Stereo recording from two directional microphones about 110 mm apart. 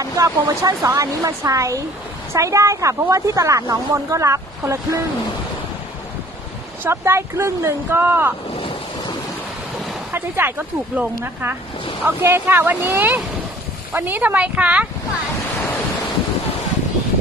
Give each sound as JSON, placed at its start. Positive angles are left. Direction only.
{"t": 0.0, "sound": "speech", "side_deg": -30}
{"t": 6.8, "sound": "speech", "side_deg": -25}
{"t": 8.5, "sound": "waves", "side_deg": 55}
{"t": 10.1, "sound": "speech", "side_deg": -20}
{"t": 12.0, "sound": "speech", "side_deg": -20}